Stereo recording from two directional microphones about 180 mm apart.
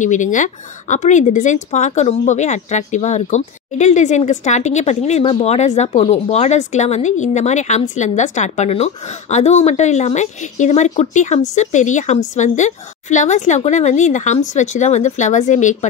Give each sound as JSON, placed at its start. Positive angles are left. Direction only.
{"t": 0.0, "sound": "speech", "side_deg": 45}